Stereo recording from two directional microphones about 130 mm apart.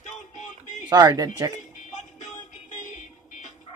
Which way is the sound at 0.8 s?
35° right (ahead or behind).